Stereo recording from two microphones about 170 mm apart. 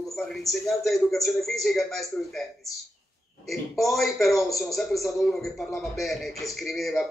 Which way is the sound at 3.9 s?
Centre (ahead or behind).